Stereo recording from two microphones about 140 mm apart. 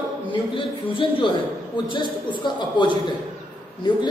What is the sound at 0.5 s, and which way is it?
A man's voice, 40° left (ahead or behind).